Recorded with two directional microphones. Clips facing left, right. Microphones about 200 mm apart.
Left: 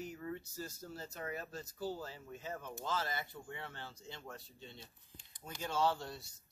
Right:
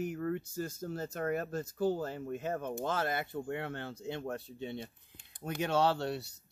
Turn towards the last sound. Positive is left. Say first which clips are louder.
# right 9 dB
turn(degrees=-70)  # may be behind; listen again after turning